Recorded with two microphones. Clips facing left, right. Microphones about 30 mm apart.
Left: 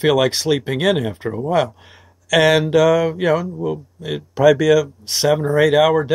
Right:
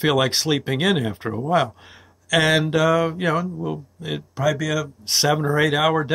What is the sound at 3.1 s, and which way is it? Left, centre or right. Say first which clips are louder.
Speech: left 4 dB; centre.